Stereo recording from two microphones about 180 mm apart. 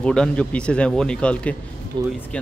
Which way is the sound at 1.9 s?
25° right (ahead or behind).